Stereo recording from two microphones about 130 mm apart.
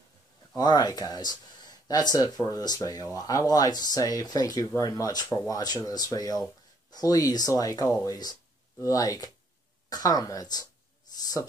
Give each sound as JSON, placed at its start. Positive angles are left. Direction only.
{"t": 0.6, "sound": "speech", "side_deg": 30}